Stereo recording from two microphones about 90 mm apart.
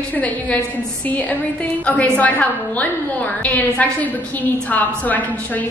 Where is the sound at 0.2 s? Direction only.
15° left (ahead or behind).